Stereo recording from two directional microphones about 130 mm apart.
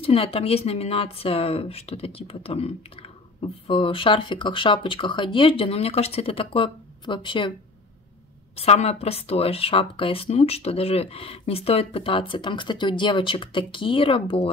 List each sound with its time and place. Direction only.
0.0 s speech: 45° left (ahead or behind)
8.5 s speech: 55° left (ahead or behind)